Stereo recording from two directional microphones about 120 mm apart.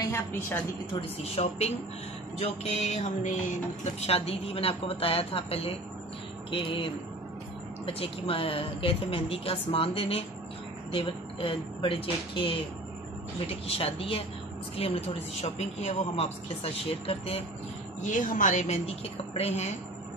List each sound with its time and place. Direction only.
0.0 s a woman's voice: 20° left (ahead or behind)
1.2 s speech: 60° left (ahead or behind)
4.0 s a woman's voice: 55° left (ahead or behind)
15.4 s speech: 70° left (ahead or behind); by 17.5 s 55° left (ahead or behind)
18.0 s a woman's voice: 90° left
19.3 s a woman's voice: 65° left (ahead or behind)